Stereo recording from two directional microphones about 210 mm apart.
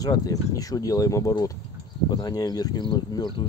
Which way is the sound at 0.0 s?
15° left (ahead or behind).